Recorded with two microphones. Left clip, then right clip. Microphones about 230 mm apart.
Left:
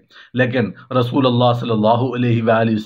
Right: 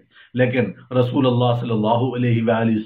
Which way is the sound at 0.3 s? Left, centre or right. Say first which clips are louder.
Left 1 dB; left.